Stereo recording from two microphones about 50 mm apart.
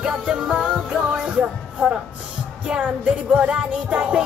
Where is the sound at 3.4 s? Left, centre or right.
Right.